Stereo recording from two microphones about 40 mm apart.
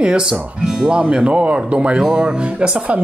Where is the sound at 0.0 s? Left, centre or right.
Right.